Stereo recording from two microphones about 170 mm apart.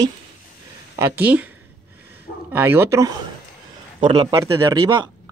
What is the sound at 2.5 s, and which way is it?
Speech, 10° right (ahead or behind).